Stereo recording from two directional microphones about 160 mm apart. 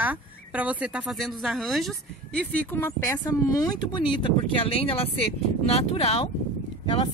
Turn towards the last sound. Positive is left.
turn(degrees=35)  # may be behind; listen again after turning